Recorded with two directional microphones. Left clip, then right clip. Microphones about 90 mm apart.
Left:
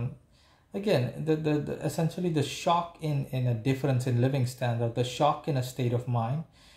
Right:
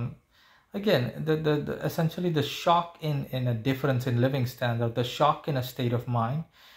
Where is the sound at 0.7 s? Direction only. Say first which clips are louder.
Right 2 dB; 25° left (ahead or behind).